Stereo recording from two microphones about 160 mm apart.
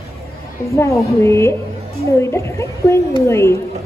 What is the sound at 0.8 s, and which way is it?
Speech, 15° left (ahead or behind).